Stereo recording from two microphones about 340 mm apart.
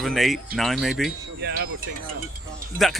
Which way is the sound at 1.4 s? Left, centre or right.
Right.